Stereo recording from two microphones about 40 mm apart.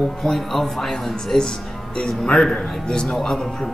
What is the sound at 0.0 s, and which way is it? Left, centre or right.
Speech, centre.